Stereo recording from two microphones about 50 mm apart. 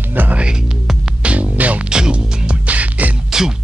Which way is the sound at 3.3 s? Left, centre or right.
Centre.